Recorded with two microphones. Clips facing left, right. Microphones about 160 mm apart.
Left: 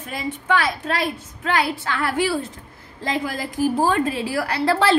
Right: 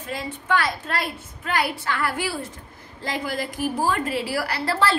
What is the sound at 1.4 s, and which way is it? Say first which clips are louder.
Speech: left 3 dB; 60° left (ahead or behind).